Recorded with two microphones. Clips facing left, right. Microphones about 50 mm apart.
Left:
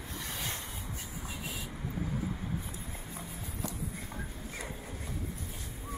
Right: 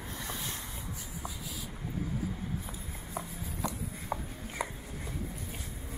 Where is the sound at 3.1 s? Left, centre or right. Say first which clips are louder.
Right 3 dB; right.